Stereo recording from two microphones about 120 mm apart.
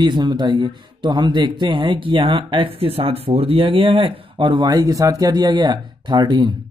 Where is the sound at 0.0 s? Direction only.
40° right (ahead or behind).